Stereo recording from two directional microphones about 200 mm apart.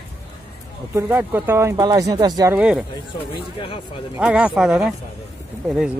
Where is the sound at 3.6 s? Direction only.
25° left (ahead or behind).